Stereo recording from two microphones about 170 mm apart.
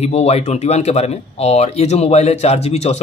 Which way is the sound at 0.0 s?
40° left (ahead or behind).